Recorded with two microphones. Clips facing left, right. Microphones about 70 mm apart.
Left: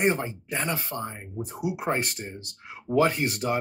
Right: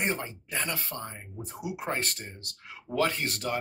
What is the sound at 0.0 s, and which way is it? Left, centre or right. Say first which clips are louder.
Speech: left 6 dB; left.